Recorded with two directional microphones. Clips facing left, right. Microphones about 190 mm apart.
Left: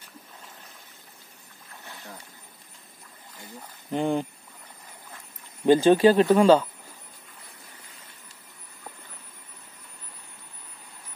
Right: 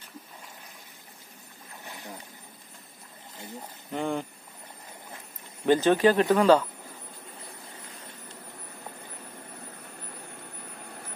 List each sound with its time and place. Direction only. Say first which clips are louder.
1.9 s a sound: right 2 dB; 15° right (ahead or behind)
3.9 s speech: left 4 dB; 15° left (ahead or behind)
5.7 s speech: left 4 dB; 30° left (ahead or behind)
10.6 s vehicle: right 8 dB; 65° right (ahead or behind)